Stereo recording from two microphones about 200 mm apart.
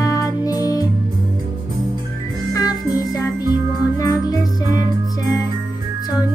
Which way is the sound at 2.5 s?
20° left (ahead or behind).